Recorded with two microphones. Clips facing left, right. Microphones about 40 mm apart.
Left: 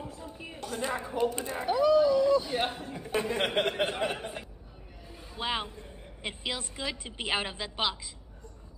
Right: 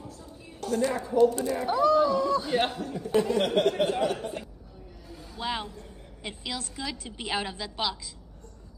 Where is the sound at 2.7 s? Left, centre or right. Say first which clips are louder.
Right 6 dB; left.